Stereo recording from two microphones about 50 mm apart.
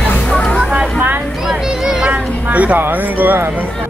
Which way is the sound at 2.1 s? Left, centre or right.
Right.